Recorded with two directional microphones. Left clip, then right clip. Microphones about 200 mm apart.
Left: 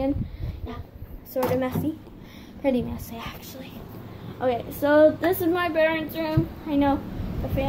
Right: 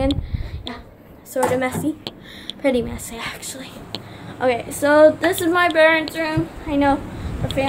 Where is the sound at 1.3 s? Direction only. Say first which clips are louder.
Right 5 dB; 10° right (ahead or behind).